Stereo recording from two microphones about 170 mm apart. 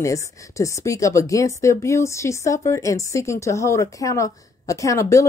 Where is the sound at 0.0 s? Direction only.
20° left (ahead or behind).